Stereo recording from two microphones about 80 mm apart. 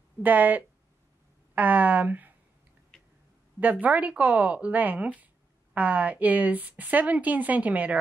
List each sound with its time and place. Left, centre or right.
0.2 s a woman's voice: right
2.9 s a sound: centre
3.8 s a woman's voice: centre